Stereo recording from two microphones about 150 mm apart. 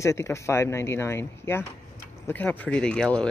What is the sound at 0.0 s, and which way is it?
Speech, 20° left (ahead or behind).